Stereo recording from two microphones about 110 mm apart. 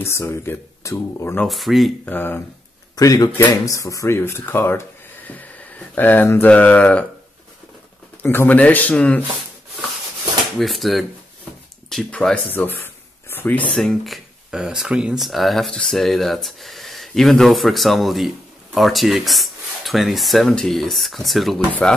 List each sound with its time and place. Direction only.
0.0 s speech: 25° left (ahead or behind)
1.5 s speech: centre (ahead or behind)
2.0 s speech: 20° left (ahead or behind)
3.0 s speech: 35° left (ahead or behind)
5.9 s speech: 15° left (ahead or behind)
8.2 s speech: 20° left (ahead or behind)
10.6 s speech: centre (ahead or behind)
12.5 s a sound: 15° left (ahead or behind)
13.7 s speech: centre (ahead or behind)